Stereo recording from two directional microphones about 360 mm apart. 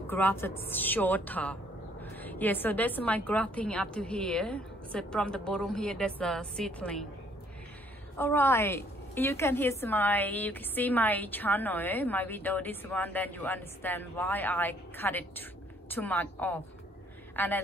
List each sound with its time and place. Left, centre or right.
0.1 s a woman's voice: centre
8.2 s a woman's voice: centre